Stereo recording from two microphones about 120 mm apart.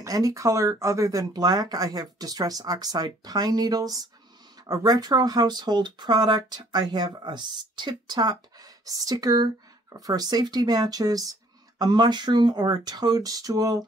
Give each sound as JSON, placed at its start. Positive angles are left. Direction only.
{"t": 0.0, "sound": "speech", "side_deg": -25}